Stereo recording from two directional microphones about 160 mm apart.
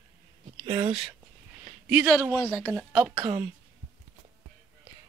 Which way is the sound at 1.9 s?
5° right (ahead or behind).